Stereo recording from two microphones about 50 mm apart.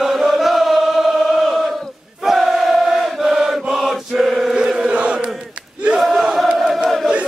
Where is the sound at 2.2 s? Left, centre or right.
Centre.